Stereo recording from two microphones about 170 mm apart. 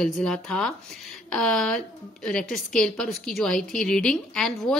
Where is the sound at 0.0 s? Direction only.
Centre (ahead or behind).